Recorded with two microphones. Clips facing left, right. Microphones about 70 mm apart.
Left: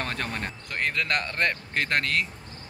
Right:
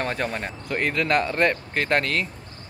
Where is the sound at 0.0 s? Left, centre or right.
Centre.